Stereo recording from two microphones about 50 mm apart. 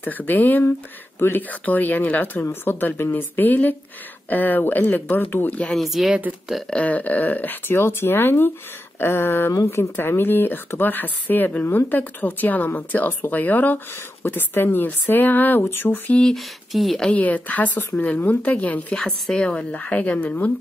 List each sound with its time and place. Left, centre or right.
0.0 s speech: left
2.6 s speech: left
5.8 s speech: centre
6.7 s speech: left
7.7 s speech: left
16.3 s speech: centre
17.1 s speech: left
19.3 s speech: centre
19.7 s speech: left